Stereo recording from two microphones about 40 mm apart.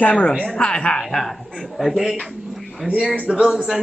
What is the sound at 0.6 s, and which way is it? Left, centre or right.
Speech, left.